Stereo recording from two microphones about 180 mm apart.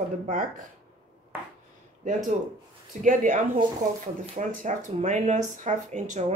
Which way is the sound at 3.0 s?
45° right (ahead or behind).